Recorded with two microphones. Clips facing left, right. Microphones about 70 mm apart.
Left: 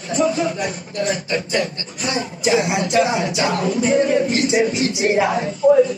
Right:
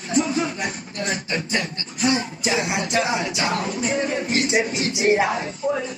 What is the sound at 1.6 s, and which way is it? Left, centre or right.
Speech, left.